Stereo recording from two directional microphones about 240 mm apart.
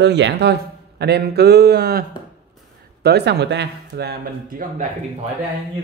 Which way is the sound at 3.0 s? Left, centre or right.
Right.